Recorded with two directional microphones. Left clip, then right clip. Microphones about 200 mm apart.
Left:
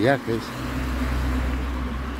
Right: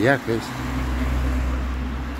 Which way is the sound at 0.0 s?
5° left (ahead or behind).